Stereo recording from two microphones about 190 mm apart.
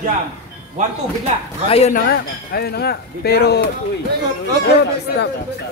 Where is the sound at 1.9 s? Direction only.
55° left (ahead or behind).